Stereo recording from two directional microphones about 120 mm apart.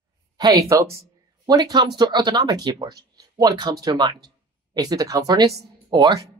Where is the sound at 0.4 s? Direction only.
30° right (ahead or behind).